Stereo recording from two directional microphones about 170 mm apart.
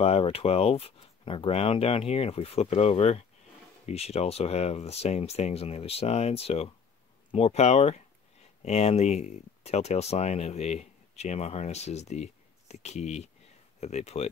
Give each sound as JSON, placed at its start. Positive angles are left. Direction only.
{"t": 0.0, "sound": "speech", "side_deg": 35}